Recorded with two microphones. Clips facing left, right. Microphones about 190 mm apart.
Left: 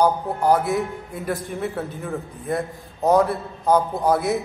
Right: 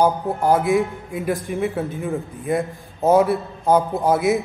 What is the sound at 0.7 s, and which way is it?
A man's voice, 5° right (ahead or behind).